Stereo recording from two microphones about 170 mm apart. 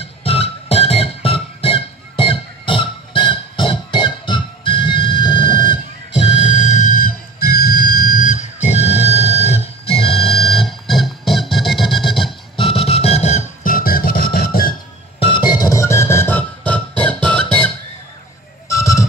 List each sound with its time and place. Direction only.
0.2 s music: 35° left (ahead or behind)
10.5 s music: centre (ahead or behind)
12.5 s music: 35° left (ahead or behind)
13.7 s music: 60° left (ahead or behind)
15.1 s music: 30° left (ahead or behind); by 17.6 s 5° left (ahead or behind)
18.7 s a sound: 20° left (ahead or behind)